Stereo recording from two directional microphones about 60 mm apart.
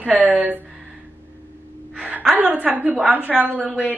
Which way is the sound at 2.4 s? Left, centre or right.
Right.